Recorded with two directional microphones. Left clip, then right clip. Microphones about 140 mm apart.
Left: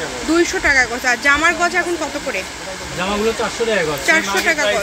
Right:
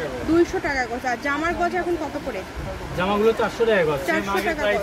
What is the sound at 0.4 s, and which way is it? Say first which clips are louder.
Speech: left 9 dB; 25° left (ahead or behind).